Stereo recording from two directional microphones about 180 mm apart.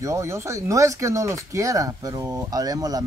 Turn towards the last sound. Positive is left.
turn(degrees=-20)  # may be behind; listen again after turning